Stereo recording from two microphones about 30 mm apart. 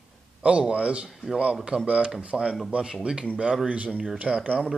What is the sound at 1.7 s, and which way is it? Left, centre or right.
Speech, right.